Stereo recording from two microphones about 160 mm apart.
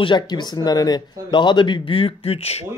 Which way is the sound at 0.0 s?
30° left (ahead or behind).